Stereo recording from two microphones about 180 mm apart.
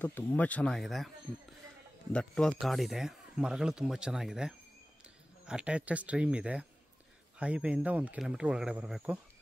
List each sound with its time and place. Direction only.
0.0 s speech: 10° left (ahead or behind)
2.1 s speech: 5° left (ahead or behind)